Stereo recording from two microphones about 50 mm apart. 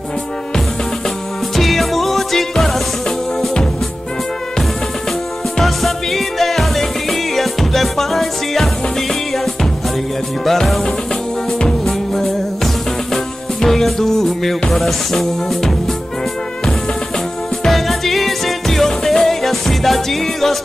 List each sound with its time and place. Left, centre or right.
1.6 s music: centre
5.6 s music: centre
10.4 s music: centre
17.6 s music: centre